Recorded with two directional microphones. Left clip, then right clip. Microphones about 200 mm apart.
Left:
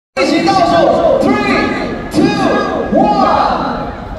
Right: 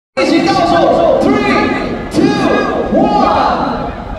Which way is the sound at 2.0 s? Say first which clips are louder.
Even; 35° left (ahead or behind).